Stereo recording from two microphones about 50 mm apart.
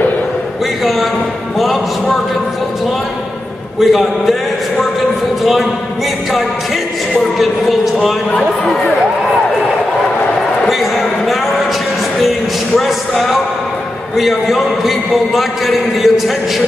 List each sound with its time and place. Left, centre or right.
3.8 s a man's voice: centre
5.4 s a man's voice: centre
7.3 s a man's voice: centre
10.7 s a sound: centre
12.7 s a man's voice: centre